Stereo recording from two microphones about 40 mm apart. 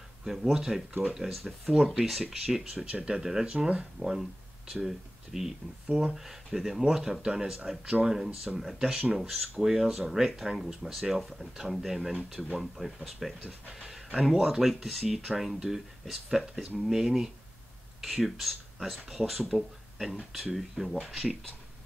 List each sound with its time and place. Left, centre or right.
0.2 s speech: centre
2.8 s speech: right
8.7 s speech: right
9.1 s speech: centre